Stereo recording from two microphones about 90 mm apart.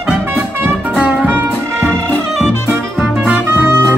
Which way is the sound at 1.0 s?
20° right (ahead or behind).